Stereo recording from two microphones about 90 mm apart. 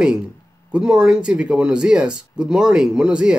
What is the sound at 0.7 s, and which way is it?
A man's voice, 10° right (ahead or behind).